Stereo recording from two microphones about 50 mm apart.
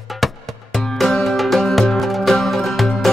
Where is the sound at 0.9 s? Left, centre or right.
Centre.